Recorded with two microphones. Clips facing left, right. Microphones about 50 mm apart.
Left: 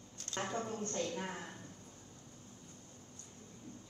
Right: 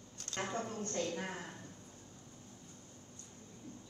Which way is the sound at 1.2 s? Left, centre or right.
Left.